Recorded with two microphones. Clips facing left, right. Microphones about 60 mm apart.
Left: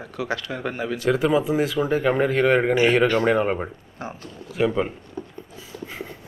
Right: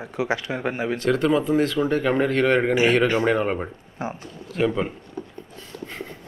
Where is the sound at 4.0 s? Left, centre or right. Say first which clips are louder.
Right 4 dB; right.